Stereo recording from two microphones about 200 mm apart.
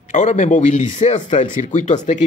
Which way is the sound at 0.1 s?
35° left (ahead or behind).